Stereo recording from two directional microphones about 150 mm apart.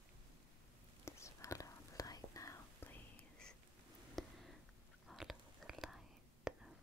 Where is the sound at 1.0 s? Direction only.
20° left (ahead or behind).